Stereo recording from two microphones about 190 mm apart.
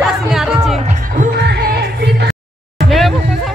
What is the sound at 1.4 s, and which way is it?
Music, 60° right (ahead or behind).